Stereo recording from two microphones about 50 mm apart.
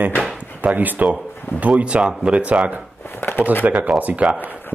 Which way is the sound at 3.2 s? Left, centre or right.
Left.